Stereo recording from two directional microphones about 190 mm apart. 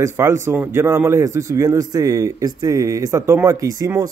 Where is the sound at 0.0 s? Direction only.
15° right (ahead or behind).